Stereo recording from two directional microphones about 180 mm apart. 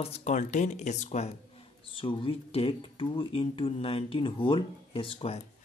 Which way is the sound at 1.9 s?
30° left (ahead or behind).